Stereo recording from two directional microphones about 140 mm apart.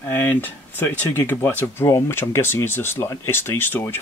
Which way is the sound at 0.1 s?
15° left (ahead or behind).